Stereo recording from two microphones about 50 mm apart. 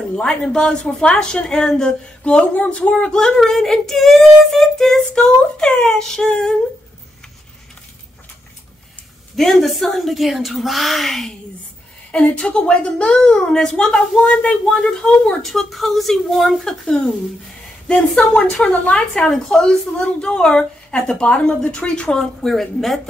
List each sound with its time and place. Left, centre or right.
0.1 s a woman's voice: centre
2.5 s speech: left
3.1 s female singing: centre
5.2 s a woman's voice: centre
9.4 s female singing: centre
12.3 s a woman's voice: left
15.4 s female singing: centre
16.6 s a woman's voice: centre
18.3 s a woman's voice: left
22.4 s female singing: centre